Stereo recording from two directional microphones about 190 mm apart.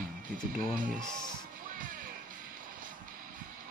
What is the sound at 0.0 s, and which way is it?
Music, 45° right (ahead or behind).